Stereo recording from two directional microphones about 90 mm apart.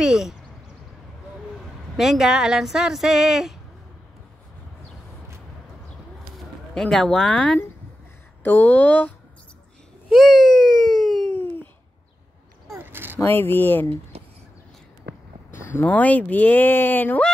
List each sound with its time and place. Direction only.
0.0 s speech: 5° right (ahead or behind)
2.0 s speech: 5° right (ahead or behind)
6.3 s speech: 5° left (ahead or behind)
10.0 s baby cry: centre (ahead or behind)
12.7 s a sound: 25° right (ahead or behind)
13.2 s speech: 25° left (ahead or behind)
15.5 s speech: 25° left (ahead or behind)